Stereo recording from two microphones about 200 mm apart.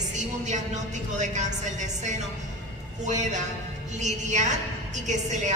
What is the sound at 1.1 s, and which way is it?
A woman's voice, 35° right (ahead or behind).